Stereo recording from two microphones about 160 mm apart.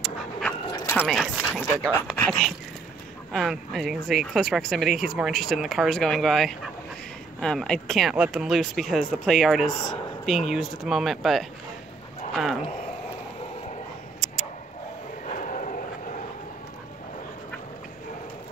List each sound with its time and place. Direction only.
0.0 s dog: 5° left (ahead or behind)
0.7 s dog: 25° left (ahead or behind)
0.9 s speech: centre (ahead or behind)
15.2 s vehicle: 50° left (ahead or behind)